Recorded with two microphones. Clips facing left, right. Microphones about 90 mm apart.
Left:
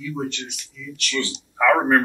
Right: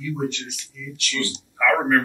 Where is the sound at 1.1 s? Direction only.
20° left (ahead or behind).